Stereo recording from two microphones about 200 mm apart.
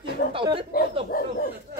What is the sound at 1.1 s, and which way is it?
Speech, 45° left (ahead or behind).